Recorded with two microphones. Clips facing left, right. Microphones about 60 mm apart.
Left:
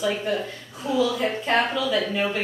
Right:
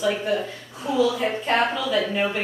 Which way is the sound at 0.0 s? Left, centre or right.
Centre.